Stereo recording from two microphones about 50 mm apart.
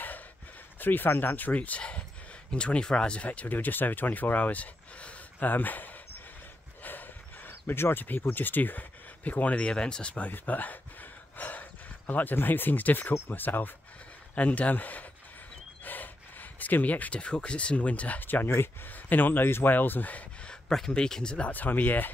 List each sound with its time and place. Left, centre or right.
0.7 s speech: left
6.8 s a sound: left
8.2 s speech: left
9.7 s speech: centre
10.3 s a sound: left
12.1 s speech: left
14.3 s speech: left
18.2 s speech: left
20.4 s a sound: centre
20.9 s speech: centre
21.5 s speech: left